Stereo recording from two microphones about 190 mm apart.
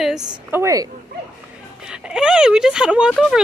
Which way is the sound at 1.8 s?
5° right (ahead or behind).